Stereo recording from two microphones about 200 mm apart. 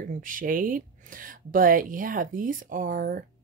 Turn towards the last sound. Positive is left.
turn(degrees=-45)  # may be behind; listen again after turning